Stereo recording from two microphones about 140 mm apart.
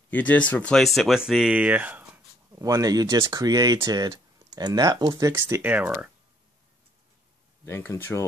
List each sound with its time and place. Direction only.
0.1 s speech: 10° left (ahead or behind); by 2.0 s 10° right (ahead or behind)
2.5 s speech: 25° right (ahead or behind)
5.3 s speech: 15° right (ahead or behind)
7.6 s speech: 15° left (ahead or behind)